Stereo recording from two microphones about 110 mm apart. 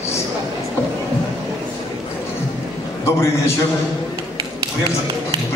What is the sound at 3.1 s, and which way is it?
Speech, 25° left (ahead or behind).